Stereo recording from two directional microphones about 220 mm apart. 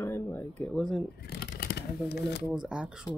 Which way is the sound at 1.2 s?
45° left (ahead or behind).